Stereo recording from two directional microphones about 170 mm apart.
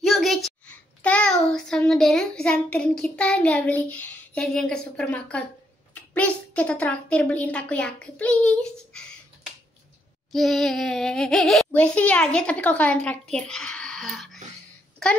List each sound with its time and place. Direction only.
0.0 s a sound: centre (ahead or behind)
1.0 s a child's voice: 5° left (ahead or behind)
10.3 s a child's voice: centre (ahead or behind)